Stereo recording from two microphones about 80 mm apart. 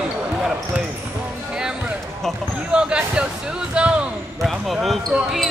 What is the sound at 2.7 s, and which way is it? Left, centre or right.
Speech, centre.